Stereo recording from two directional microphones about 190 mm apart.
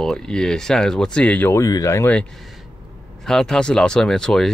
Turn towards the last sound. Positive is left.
turn(degrees=5)  # may be behind; listen again after turning